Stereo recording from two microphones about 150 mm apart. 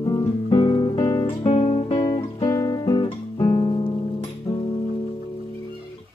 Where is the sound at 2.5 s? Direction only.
20° left (ahead or behind).